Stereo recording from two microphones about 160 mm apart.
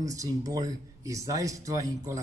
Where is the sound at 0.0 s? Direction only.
20° right (ahead or behind).